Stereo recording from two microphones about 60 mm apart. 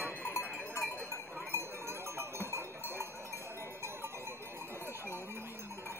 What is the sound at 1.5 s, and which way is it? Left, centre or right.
Cowbell, right.